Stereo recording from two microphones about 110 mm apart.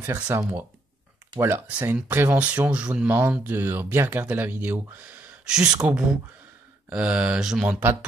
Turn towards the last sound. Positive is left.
turn(degrees=-5)  # may be behind; listen again after turning